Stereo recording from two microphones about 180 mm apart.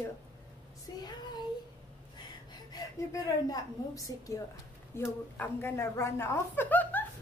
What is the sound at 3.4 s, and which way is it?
A woman's voice, 20° left (ahead or behind).